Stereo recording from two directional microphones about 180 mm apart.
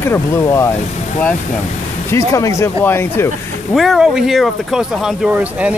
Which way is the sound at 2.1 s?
15° left (ahead or behind).